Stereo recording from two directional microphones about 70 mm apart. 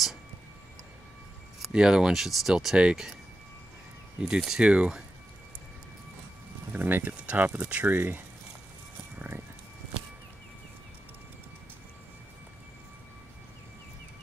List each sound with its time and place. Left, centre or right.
1.7 s speech: centre
4.2 s speech: centre
6.7 s speech: right